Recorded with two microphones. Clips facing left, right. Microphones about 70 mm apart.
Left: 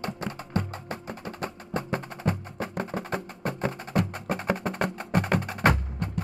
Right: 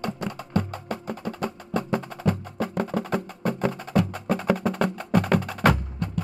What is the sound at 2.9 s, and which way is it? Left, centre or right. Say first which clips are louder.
Music: right 5 dB; left.